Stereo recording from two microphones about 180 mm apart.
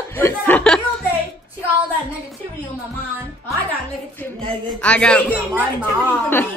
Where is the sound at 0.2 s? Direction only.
10° left (ahead or behind).